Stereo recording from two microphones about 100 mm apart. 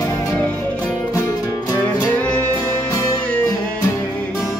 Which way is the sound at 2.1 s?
15° left (ahead or behind).